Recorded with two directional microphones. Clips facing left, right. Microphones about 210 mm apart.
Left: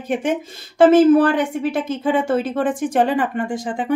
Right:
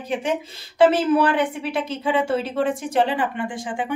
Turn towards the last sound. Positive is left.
turn(degrees=40)  # may be behind; listen again after turning